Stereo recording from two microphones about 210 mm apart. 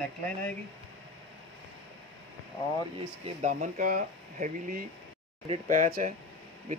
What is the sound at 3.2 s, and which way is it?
Speech, 35° right (ahead or behind).